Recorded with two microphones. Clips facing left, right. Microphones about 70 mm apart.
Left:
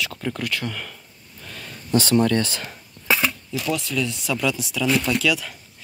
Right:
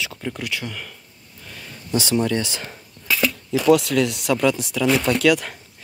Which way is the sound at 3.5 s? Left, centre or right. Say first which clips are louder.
Right 10 dB; right.